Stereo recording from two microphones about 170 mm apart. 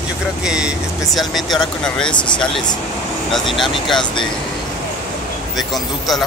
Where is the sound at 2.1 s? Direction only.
25° left (ahead or behind).